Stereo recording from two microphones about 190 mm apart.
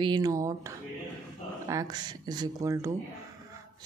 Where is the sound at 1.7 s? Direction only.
20° right (ahead or behind).